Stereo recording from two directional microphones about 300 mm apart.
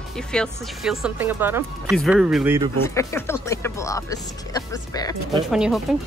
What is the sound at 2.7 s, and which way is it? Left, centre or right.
Speech, centre.